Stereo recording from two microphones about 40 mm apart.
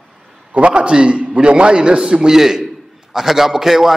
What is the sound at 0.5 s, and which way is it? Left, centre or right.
A man's voice, right.